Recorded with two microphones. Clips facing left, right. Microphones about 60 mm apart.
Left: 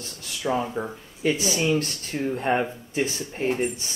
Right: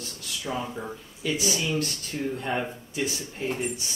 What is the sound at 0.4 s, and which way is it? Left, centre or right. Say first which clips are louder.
Speech: left 7 dB; left.